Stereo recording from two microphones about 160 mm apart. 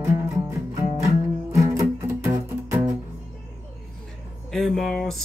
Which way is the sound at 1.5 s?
15° right (ahead or behind).